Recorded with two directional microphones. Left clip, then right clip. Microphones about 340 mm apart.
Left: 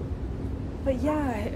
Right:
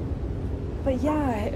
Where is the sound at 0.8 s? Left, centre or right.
Centre.